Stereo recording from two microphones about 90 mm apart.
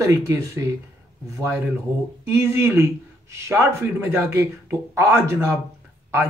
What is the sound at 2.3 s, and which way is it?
Speech, 30° right (ahead or behind).